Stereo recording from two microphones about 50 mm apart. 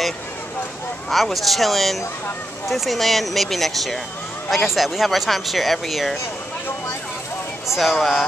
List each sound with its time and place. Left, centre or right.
1.1 s speech: centre
7.6 s speech: centre